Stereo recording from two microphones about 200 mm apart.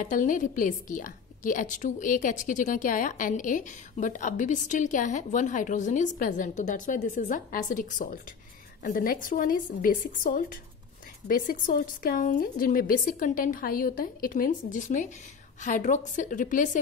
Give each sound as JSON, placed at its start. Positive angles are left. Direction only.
{"t": 0.0, "sound": "a woman's voice", "side_deg": 40}